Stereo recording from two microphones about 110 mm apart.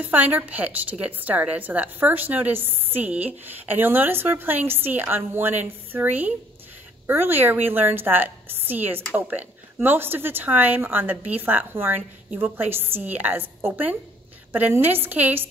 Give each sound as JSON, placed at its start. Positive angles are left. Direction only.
{"t": 0.0, "sound": "a woman's voice", "side_deg": -15}